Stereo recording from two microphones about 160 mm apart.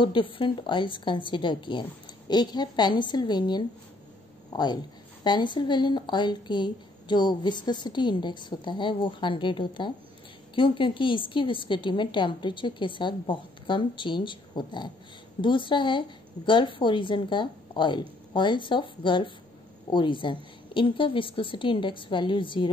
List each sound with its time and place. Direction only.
0.0 s a woman's voice: 30° left (ahead or behind)